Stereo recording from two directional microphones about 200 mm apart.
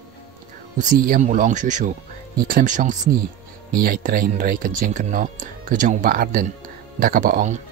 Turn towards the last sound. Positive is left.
turn(degrees=-40)  # may be behind; listen again after turning